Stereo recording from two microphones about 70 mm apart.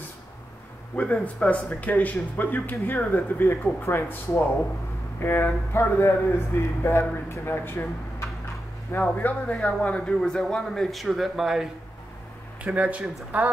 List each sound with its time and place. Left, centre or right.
1.2 s a man's voice: left
9.0 s speech: left; by 11.7 s centre
12.6 s speech: centre